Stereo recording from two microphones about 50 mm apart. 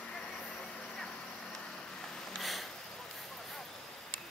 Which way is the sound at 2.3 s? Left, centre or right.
Centre.